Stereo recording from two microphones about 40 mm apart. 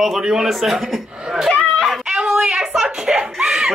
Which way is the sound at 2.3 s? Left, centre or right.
Centre.